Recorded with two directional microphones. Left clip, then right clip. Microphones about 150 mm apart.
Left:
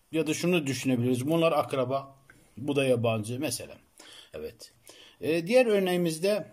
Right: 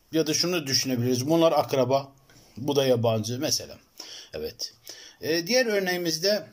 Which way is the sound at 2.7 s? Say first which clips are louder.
Right 3 dB; 10° left (ahead or behind).